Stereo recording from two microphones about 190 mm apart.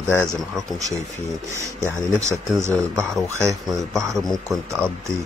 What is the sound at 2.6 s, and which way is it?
Speech, 15° right (ahead or behind).